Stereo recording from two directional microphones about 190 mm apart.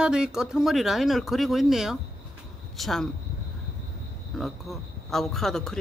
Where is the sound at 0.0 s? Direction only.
5° right (ahead or behind).